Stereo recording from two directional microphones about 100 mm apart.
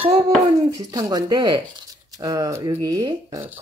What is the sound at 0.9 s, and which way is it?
Speech, 40° right (ahead or behind).